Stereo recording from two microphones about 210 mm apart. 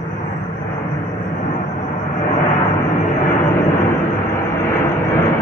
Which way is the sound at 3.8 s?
15° left (ahead or behind).